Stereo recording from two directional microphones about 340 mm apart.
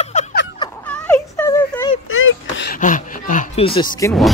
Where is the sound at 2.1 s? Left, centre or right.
Left.